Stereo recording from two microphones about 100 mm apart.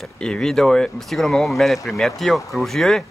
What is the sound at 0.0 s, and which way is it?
Speech, 5° left (ahead or behind).